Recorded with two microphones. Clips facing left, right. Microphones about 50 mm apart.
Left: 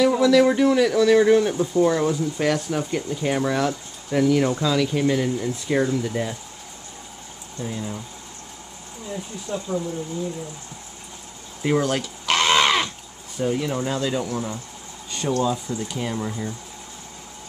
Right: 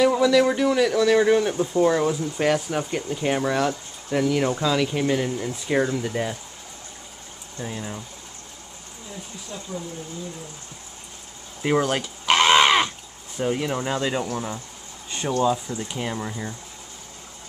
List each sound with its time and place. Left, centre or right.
0.1 s speech: centre
7.6 s speech: centre
9.5 s speech: centre
11.6 s crow: centre
13.4 s speech: centre